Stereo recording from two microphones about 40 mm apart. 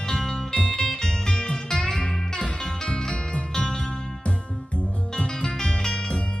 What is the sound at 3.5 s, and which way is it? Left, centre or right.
Music, centre.